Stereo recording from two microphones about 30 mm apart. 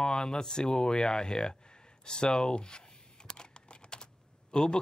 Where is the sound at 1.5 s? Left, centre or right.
Left.